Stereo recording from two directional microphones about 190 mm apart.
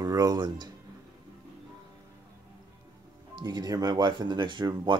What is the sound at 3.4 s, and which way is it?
Speech, 20° right (ahead or behind).